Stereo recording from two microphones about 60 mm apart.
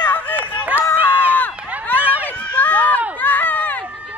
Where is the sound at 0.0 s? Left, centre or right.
Left.